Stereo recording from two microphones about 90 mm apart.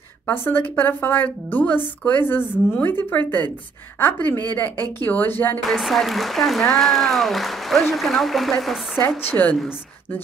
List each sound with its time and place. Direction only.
0.3 s a woman's voice: 25° left (ahead or behind)
5.7 s speech: centre (ahead or behind)
9.2 s a woman's voice: 20° left (ahead or behind)